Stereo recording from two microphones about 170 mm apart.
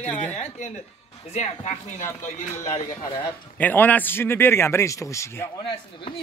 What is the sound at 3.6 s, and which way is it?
A man's voice, 10° left (ahead or behind).